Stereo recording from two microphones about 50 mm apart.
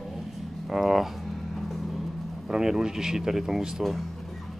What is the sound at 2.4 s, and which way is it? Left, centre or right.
Speech, centre.